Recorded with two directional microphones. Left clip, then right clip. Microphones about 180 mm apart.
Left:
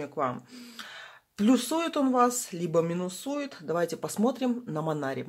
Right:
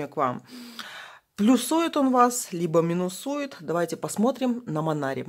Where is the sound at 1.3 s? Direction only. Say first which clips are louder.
Right 4 dB; 30° right (ahead or behind).